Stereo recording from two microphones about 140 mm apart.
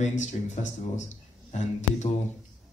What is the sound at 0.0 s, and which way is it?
Speech, 60° left (ahead or behind).